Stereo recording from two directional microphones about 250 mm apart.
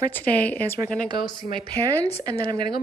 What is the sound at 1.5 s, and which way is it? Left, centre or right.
A woman's voice, centre.